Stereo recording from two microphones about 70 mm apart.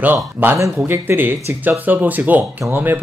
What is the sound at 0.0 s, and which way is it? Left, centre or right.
Speech, right.